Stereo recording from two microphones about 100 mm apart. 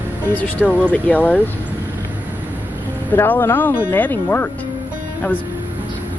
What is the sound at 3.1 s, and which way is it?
Speech, 20° left (ahead or behind).